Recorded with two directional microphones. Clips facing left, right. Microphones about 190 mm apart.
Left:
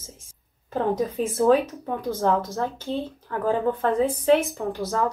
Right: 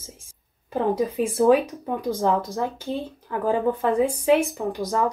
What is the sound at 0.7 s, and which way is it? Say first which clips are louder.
Speech: right 1 dB; 10° right (ahead or behind).